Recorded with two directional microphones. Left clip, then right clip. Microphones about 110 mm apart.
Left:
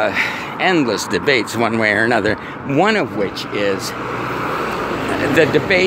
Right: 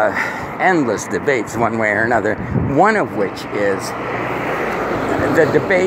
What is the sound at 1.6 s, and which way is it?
Speech, 45° left (ahead or behind).